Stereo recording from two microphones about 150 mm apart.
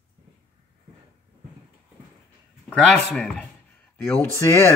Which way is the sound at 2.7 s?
5° left (ahead or behind).